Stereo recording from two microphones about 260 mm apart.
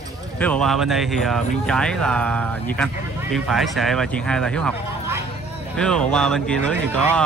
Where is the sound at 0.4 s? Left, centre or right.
Centre.